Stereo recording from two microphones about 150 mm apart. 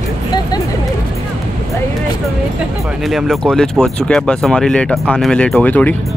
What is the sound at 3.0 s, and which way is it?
Speech, centre (ahead or behind).